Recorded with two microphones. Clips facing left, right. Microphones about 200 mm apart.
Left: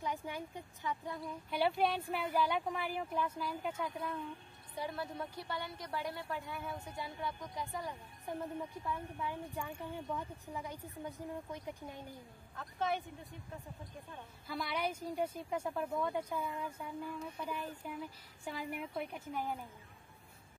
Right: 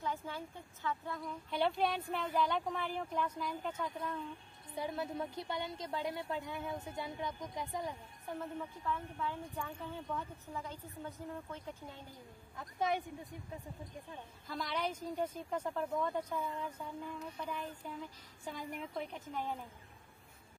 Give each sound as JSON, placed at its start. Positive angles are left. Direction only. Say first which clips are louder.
{"t": 0.0, "sound": "a woman's voice", "louder": "even", "side_deg": 15}
{"t": 4.7, "sound": "a woman's voice", "louder": "right 2 dB", "side_deg": -20}
{"t": 8.3, "sound": "a woman's voice", "louder": "left 1 dB", "side_deg": 15}
{"t": 12.5, "sound": "a woman's voice", "louder": "right 1 dB", "side_deg": -15}
{"t": 14.5, "sound": "a woman's voice", "louder": "left 1 dB", "side_deg": 10}